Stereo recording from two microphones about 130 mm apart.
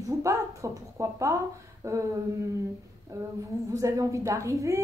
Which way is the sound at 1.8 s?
25° right (ahead or behind).